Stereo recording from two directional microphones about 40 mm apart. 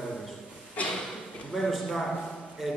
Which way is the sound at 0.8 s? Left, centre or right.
Left.